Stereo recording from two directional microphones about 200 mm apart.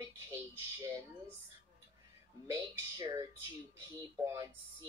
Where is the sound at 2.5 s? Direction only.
15° right (ahead or behind).